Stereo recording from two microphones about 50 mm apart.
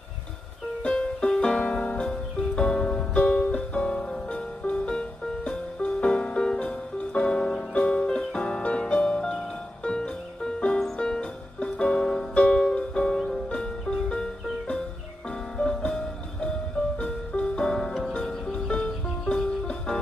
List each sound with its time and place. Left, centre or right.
0.8 s music: centre